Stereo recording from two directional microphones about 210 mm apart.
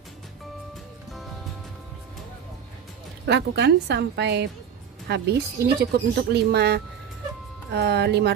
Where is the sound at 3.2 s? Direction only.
55° right (ahead or behind).